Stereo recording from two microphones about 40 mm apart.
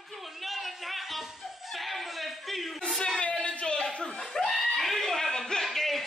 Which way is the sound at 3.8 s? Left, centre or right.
Centre.